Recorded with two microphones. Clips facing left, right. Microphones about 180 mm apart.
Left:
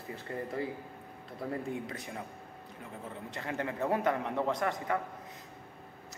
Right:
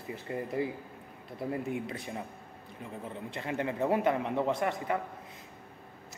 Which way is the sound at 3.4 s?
20° right (ahead or behind).